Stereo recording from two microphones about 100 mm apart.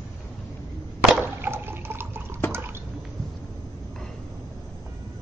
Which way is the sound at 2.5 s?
20° right (ahead or behind).